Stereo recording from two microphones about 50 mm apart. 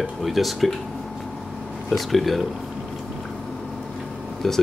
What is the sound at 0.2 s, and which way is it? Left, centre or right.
Speech, centre.